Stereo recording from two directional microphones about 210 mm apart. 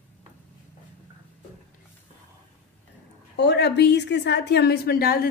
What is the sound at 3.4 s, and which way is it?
A woman's voice, 55° left (ahead or behind).